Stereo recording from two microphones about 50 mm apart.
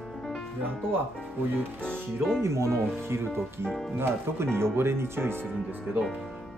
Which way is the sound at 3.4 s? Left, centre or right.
Centre.